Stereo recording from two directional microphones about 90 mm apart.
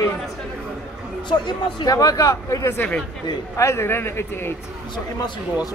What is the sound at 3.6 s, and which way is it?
Speech, 30° left (ahead or behind).